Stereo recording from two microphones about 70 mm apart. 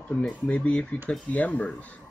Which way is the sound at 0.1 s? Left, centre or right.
Centre.